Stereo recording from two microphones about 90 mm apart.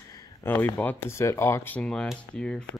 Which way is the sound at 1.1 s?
30° left (ahead or behind).